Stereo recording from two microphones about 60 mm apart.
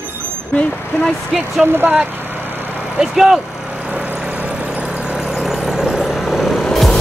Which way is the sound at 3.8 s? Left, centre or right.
Right.